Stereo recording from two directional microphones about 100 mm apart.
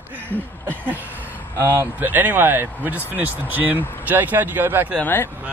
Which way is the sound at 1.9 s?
20° right (ahead or behind).